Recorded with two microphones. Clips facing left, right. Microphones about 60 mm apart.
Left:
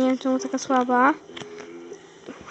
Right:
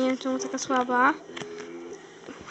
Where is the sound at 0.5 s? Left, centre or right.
Left.